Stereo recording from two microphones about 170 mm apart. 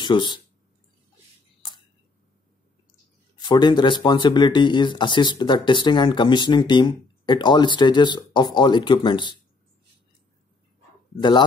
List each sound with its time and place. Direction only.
0.0 s speech: 25° left (ahead or behind)
3.3 s speech: 25° left (ahead or behind)
11.1 s speech: 25° left (ahead or behind)